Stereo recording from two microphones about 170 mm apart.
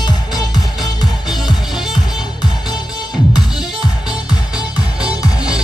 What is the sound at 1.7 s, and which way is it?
Music, centre (ahead or behind).